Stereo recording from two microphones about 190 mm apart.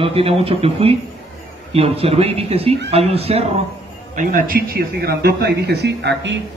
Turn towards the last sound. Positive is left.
turn(degrees=-65)  # may be behind; listen again after turning